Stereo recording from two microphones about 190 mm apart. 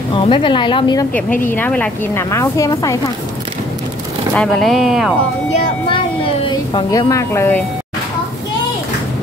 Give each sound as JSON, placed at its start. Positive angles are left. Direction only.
{"t": 0.1, "sound": "speech", "side_deg": 25}
{"t": 1.1, "sound": "a woman's voice", "side_deg": 10}
{"t": 4.4, "sound": "speech", "side_deg": 0}
{"t": 5.5, "sound": "speech", "side_deg": 30}